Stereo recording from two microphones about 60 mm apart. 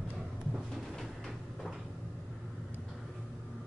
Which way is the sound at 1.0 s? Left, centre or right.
Centre.